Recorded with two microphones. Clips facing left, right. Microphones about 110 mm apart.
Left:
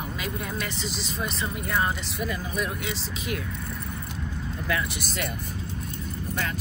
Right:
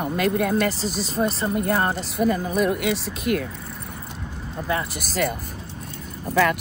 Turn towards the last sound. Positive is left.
turn(degrees=-70)  # may be behind; listen again after turning